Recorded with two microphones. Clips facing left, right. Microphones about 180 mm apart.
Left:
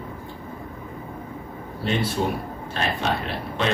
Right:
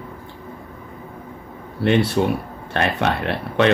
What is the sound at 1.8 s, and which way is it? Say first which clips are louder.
Speech: right 7 dB; 65° right (ahead or behind).